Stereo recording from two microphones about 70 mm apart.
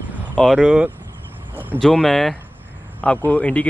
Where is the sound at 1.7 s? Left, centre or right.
Centre.